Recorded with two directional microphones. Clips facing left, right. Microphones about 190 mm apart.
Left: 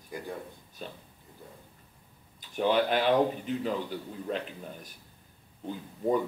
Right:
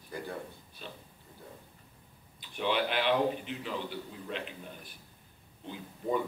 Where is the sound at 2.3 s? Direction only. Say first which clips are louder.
Left 5 dB; 45° left (ahead or behind).